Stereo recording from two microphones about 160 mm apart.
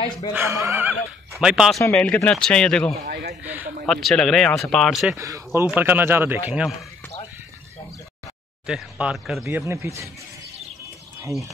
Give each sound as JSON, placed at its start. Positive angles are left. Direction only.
{"t": 0.3, "sound": "speech", "side_deg": -15}
{"t": 1.9, "sound": "speech", "side_deg": 5}
{"t": 3.1, "sound": "speech", "side_deg": -85}
{"t": 3.8, "sound": "speech", "side_deg": 0}
{"t": 5.1, "sound": "speech", "side_deg": -20}
{"t": 8.6, "sound": "speech", "side_deg": -5}
{"t": 9.7, "sound": "speech", "side_deg": -15}